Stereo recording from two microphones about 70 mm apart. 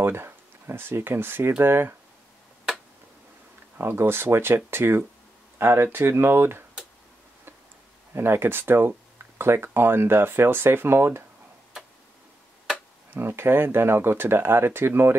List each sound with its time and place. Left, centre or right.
0.0 s speech: right
3.7 s speech: right
8.1 s speech: right
13.1 s speech: right